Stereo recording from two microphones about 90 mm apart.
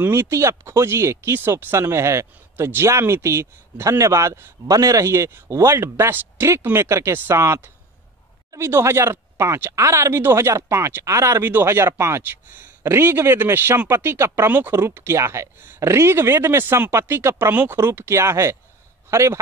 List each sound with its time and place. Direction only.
0.0 s speech: 25° right (ahead or behind)